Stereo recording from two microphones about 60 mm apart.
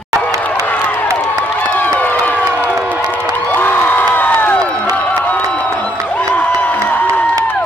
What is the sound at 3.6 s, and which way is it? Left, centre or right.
Crowd, left.